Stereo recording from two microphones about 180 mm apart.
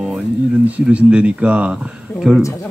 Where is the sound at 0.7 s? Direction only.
5° right (ahead or behind).